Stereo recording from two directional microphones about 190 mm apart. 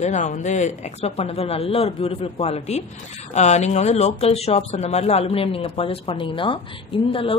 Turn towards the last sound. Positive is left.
turn(degrees=30)  # may be behind; listen again after turning